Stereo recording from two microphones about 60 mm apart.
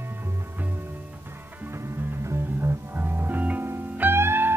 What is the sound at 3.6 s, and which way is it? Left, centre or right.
Music, right.